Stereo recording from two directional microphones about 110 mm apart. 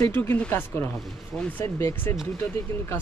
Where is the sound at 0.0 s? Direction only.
20° left (ahead or behind).